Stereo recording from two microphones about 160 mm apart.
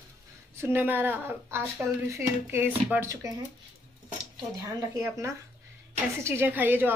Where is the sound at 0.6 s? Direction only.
15° right (ahead or behind).